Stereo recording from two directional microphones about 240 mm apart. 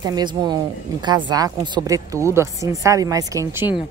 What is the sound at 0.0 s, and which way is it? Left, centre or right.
A woman's voice, centre.